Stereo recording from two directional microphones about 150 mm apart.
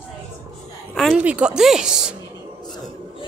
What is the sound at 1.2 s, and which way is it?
Speech, 10° right (ahead or behind).